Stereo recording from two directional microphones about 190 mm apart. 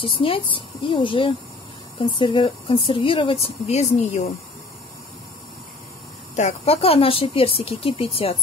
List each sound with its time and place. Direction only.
0.0 s a woman's voice: 30° left (ahead or behind)
6.3 s speech: 35° left (ahead or behind)